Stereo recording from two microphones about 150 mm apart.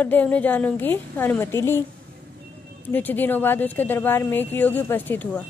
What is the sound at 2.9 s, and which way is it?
Speech, 10° left (ahead or behind).